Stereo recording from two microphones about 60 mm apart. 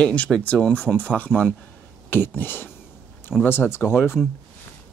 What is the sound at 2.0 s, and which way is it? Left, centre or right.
Speech, left.